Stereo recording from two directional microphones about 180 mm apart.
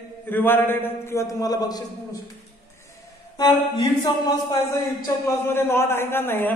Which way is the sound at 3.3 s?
25° left (ahead or behind).